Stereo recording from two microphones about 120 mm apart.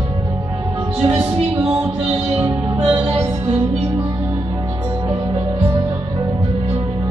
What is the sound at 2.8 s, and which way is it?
Music, 50° right (ahead or behind).